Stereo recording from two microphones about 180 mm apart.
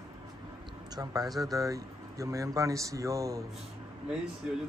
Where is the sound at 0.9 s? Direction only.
20° right (ahead or behind).